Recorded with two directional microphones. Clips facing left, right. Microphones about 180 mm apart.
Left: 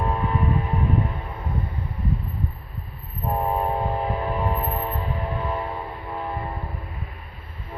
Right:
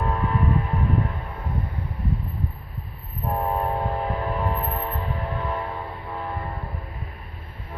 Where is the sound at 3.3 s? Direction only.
10° left (ahead or behind).